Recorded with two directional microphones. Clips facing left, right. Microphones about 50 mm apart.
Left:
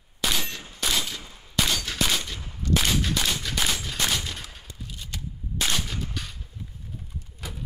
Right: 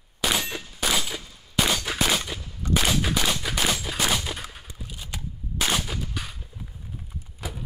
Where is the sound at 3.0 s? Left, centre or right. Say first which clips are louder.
Right 2 dB; centre.